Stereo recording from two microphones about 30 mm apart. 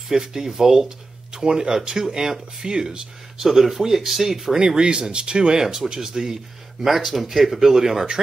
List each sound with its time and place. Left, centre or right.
0.1 s speech: centre
3.4 s speech: centre
4.6 s speech: right
7.0 s speech: centre